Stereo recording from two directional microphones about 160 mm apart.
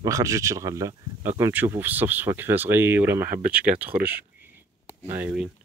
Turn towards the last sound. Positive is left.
turn(degrees=-10)  # may be behind; listen again after turning